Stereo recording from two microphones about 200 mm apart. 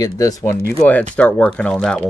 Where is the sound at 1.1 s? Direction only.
5° left (ahead or behind).